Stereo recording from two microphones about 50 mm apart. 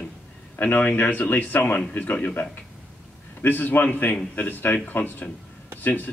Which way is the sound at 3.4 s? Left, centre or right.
Left.